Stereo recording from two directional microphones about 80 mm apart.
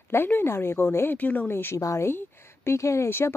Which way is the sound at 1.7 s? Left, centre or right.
Left.